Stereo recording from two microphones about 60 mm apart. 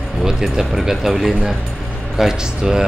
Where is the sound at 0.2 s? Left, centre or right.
Centre.